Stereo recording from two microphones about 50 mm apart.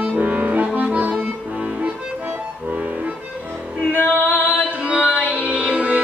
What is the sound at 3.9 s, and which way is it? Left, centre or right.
Music, left.